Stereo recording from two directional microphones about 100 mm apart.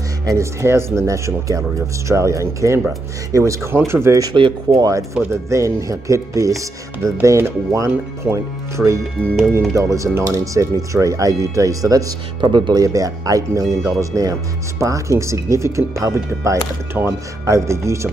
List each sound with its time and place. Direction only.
0.2 s speech: 30° right (ahead or behind)
4.4 s speech: 55° right (ahead or behind)
5.3 s speech: 30° right (ahead or behind)
12.4 s speech: 50° right (ahead or behind)
12.8 s speech: 35° right (ahead or behind)